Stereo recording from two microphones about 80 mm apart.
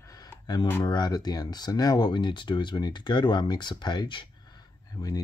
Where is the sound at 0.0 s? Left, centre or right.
Left.